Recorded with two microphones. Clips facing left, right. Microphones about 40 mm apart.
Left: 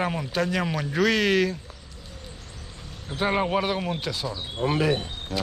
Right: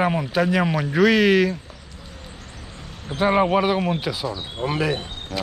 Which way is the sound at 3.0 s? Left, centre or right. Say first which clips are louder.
Right 6 dB; centre.